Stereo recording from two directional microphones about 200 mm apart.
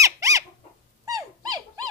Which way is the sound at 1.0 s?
20° right (ahead or behind).